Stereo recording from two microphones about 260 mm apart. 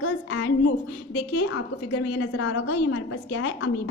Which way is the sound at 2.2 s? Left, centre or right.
Left.